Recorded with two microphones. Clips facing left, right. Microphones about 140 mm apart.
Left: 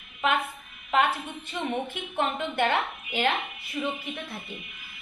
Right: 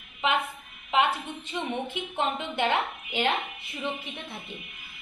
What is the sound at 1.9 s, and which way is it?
A woman's voice, 15° right (ahead or behind).